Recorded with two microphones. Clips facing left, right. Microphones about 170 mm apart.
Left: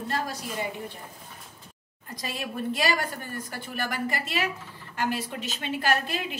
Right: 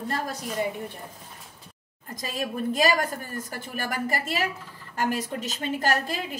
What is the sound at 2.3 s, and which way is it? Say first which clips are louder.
A woman's voice: right 4 dB; 40° right (ahead or behind).